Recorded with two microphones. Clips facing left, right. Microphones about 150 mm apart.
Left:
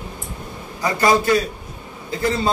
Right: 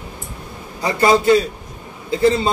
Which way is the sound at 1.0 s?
25° right (ahead or behind).